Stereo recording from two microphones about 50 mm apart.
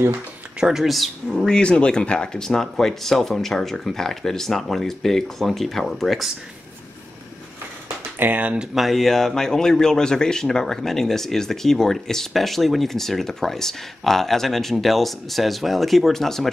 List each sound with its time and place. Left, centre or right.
0.6 s speech: centre
0.8 s speech: centre
1.5 s a man's voice: centre
8.2 s speech: right
8.7 s a man's voice: centre